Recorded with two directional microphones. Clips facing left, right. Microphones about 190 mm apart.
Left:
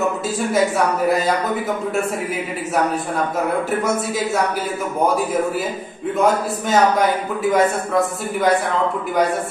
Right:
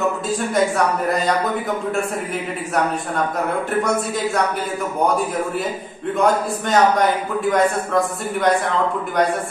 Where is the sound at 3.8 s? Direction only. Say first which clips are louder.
Even; centre (ahead or behind).